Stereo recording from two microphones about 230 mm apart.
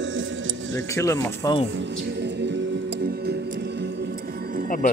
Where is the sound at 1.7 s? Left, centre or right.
Right.